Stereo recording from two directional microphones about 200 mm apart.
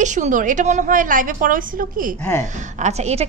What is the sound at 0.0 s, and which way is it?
A woman's voice, 35° right (ahead or behind).